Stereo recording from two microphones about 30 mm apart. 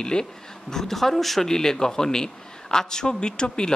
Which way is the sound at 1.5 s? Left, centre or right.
Centre.